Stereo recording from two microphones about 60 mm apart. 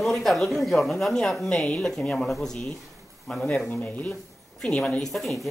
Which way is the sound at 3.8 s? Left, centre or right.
Left.